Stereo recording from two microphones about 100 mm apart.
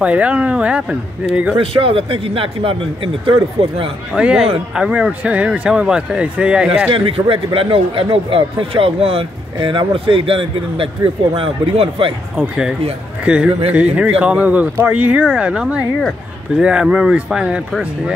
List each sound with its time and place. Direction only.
0.0 s speech: 15° right (ahead or behind)
1.6 s a man's voice: 70° right (ahead or behind)
4.1 s speech: 10° right (ahead or behind)
6.9 s a man's voice: 65° right (ahead or behind)
9.6 s a man's voice: 55° right (ahead or behind)
12.4 s speech: 5° right (ahead or behind)